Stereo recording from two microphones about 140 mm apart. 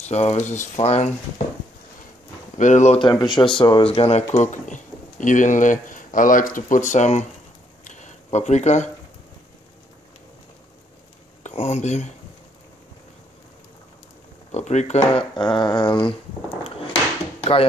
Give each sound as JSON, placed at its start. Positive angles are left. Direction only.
{"t": 0.0, "sound": "speech", "side_deg": 50}
{"t": 2.5, "sound": "speech", "side_deg": 60}
{"t": 3.0, "sound": "speech", "side_deg": 30}
{"t": 4.4, "sound": "speech", "side_deg": 60}
{"t": 7.8, "sound": "a sound", "side_deg": 60}
{"t": 11.4, "sound": "a sound", "side_deg": 50}
{"t": 14.5, "sound": "speech", "side_deg": 55}
{"t": 15.1, "sound": "speech", "side_deg": 35}
{"t": 17.4, "sound": "a sound", "side_deg": 45}